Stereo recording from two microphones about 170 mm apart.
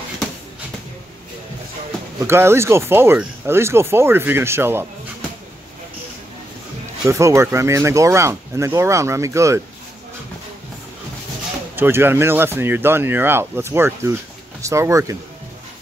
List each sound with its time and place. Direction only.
2.1 s speech: 15° right (ahead or behind)
7.1 s speech: 15° right (ahead or behind)
11.7 s speech: 10° right (ahead or behind)